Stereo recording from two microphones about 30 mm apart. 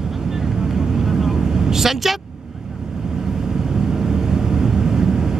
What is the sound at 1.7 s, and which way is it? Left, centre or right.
Speech, centre.